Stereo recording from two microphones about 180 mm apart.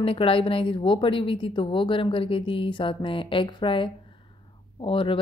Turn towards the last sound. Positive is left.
turn(degrees=30)  # may be behind; listen again after turning